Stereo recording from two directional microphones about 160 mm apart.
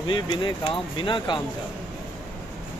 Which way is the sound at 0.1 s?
30° left (ahead or behind).